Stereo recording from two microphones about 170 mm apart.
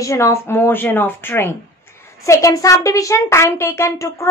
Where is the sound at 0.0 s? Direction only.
20° left (ahead or behind).